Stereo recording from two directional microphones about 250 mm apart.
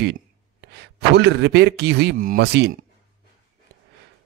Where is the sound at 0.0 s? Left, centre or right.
Right.